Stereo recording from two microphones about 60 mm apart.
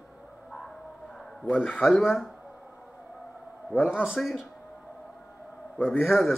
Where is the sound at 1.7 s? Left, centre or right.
Centre.